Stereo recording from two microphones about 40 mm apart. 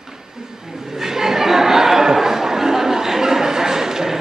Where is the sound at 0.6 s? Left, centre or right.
Centre.